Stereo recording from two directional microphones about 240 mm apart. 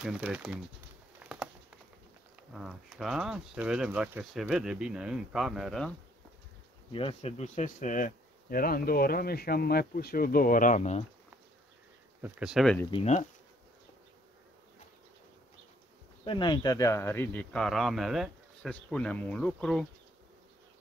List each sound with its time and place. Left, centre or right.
0.0 s speech: centre
1.2 s patter: centre
2.5 s speech: centre
6.9 s speech: left
12.2 s speech: centre
12.9 s speech: left
16.3 s speech: centre